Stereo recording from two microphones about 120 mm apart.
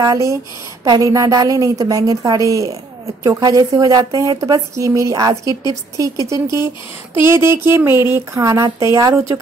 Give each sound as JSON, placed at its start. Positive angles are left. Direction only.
{"t": 0.0, "sound": "a woman's voice", "side_deg": -30}